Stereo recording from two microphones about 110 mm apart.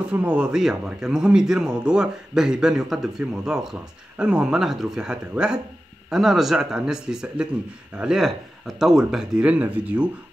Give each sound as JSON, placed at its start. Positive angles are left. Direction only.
{"t": 0.1, "sound": "speech", "side_deg": -10}